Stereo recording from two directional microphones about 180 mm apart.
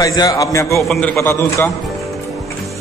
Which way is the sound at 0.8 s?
Centre (ahead or behind).